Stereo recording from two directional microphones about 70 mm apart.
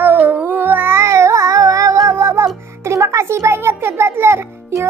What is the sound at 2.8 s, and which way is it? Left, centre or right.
A child's voice, right.